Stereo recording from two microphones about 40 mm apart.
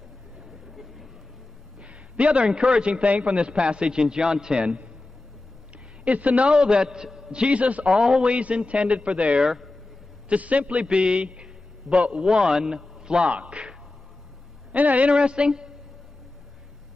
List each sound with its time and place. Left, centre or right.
0.5 s vehicle: centre
1.8 s a man's voice: right
4.6 s a man's voice: right
6.0 s speech: right
6.5 s a man's voice: right
7.9 s a man's voice: centre
8.3 s speech: right
9.4 s speech: centre
10.2 s a man's voice: right
14.7 s a man's voice: right
15.0 s a man's voice: right